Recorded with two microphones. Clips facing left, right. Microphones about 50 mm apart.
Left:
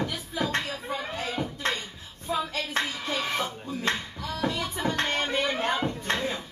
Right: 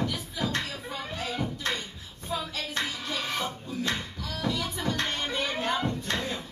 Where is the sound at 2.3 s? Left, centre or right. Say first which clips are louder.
Left 4 dB; left.